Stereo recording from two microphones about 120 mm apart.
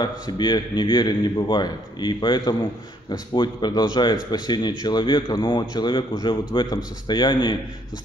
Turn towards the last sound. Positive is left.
turn(degrees=40)  # may be behind; listen again after turning